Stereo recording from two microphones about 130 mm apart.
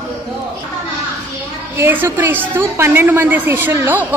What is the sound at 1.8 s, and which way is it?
A woman's voice, 15° right (ahead or behind).